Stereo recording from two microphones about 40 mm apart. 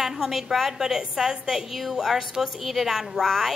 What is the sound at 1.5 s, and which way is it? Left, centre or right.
A woman's voice, centre.